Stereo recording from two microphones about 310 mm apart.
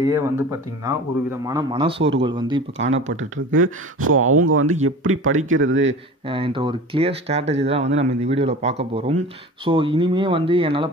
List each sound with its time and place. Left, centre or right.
0.0 s speech: centre
2.8 s speech: right
6.2 s speech: centre